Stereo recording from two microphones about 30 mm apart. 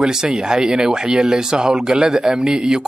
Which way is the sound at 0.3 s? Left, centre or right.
Right.